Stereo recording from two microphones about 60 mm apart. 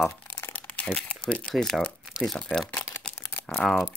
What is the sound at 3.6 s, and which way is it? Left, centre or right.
Speech, centre.